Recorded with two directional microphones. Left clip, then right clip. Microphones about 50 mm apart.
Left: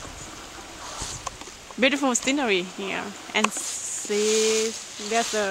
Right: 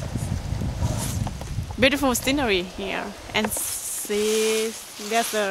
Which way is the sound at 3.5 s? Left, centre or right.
Right.